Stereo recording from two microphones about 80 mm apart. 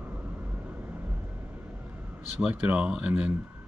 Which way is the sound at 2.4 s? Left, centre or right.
Centre.